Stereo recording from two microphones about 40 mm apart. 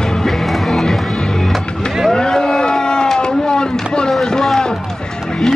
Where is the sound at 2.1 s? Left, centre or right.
Centre.